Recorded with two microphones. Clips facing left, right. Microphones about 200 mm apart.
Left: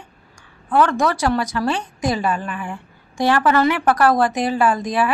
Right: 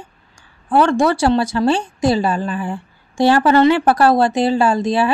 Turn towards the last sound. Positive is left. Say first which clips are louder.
# right 3 dB
turn(degrees=-30)  # may be behind; listen again after turning